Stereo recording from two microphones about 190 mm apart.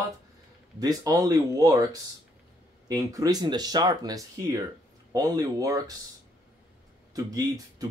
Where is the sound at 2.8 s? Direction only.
20° right (ahead or behind).